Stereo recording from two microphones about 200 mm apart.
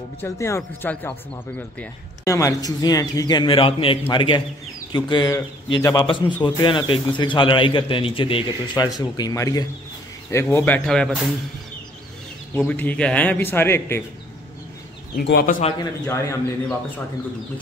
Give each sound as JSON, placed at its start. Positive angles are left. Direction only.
{"t": 0.2, "sound": "a man's voice", "side_deg": 15}
{"t": 12.5, "sound": "speech", "side_deg": 5}
{"t": 15.1, "sound": "speech", "side_deg": 50}
{"t": 15.8, "sound": "speech", "side_deg": 15}